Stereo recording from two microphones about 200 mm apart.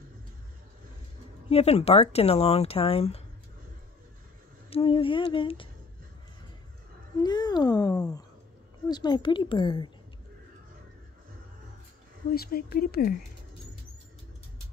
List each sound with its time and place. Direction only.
1.5 s speech: 30° left (ahead or behind)
4.6 s a woman's voice: 30° left (ahead or behind)
7.2 s a woman's voice: 20° left (ahead or behind)
12.4 s speech: 50° left (ahead or behind)